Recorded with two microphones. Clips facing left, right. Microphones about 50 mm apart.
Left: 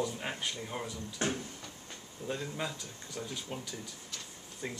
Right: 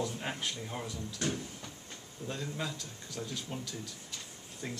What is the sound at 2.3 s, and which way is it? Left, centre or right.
Speech, centre.